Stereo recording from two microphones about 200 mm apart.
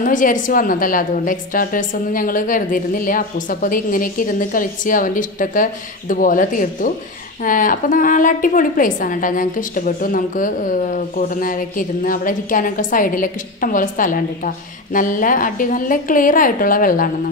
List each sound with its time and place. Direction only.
0.0 s a woman's voice: 40° left (ahead or behind)